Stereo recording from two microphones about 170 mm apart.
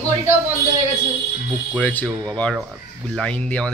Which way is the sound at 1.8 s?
10° left (ahead or behind).